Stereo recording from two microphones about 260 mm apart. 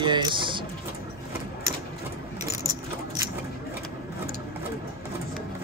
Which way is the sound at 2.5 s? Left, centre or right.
Centre.